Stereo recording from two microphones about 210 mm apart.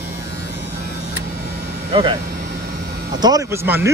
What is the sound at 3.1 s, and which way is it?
Speech, 20° right (ahead or behind).